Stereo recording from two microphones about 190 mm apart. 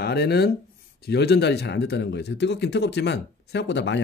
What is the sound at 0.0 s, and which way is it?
Speech, 55° left (ahead or behind).